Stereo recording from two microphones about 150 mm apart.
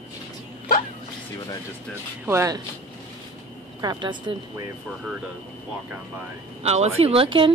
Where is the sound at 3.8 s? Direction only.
30° right (ahead or behind).